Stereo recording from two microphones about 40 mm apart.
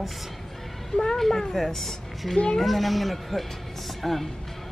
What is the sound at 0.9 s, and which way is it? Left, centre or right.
A woman's voice, centre.